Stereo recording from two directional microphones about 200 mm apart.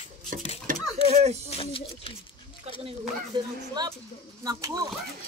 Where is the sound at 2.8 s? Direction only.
20° right (ahead or behind).